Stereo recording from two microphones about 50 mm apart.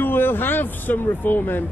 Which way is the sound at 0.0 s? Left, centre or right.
Left.